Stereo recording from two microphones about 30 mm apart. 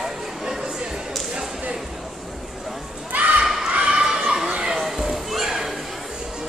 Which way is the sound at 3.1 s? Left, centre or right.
Right.